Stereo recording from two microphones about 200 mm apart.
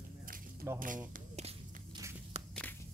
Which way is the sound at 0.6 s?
10° right (ahead or behind).